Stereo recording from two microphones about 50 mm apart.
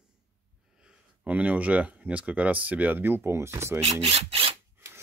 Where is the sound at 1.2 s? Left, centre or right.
Right.